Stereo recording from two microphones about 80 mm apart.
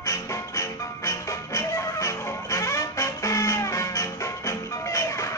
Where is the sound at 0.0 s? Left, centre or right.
Left.